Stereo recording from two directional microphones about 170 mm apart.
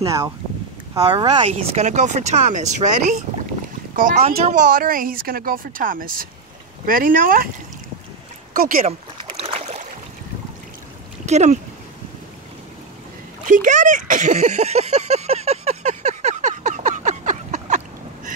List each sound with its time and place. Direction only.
0.0 s speech: 20° right (ahead or behind)
1.4 s speech: 35° right (ahead or behind)
4.5 s speech: 50° right (ahead or behind)
8.5 s speech: 55° right (ahead or behind)
8.8 s boat: 35° right (ahead or behind)
11.2 s speech: 40° right (ahead or behind)
13.5 s a sound: 50° right (ahead or behind)